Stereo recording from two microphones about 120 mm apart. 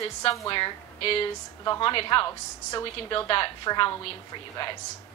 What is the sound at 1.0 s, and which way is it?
A woman's voice, 55° left (ahead or behind).